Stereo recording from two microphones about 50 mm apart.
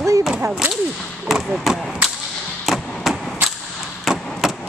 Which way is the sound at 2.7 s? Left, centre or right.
Centre.